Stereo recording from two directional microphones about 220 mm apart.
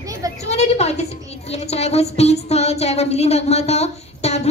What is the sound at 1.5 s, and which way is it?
Music, 30° left (ahead or behind).